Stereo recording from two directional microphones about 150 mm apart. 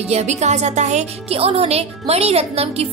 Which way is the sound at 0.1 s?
50° right (ahead or behind).